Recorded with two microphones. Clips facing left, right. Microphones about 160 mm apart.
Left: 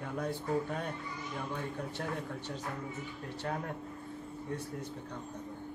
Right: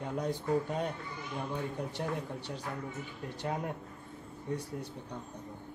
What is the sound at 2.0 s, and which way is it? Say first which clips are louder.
Speech: right 2 dB; 15° right (ahead or behind).